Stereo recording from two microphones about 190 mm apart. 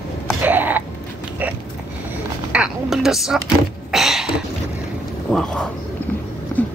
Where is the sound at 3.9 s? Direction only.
Centre (ahead or behind).